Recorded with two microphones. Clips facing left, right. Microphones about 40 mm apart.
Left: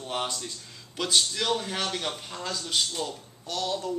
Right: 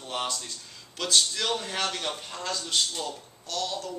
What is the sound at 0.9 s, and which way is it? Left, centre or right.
A man's voice, centre.